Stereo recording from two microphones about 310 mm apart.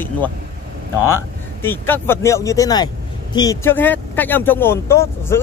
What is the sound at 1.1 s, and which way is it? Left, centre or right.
Speech, centre.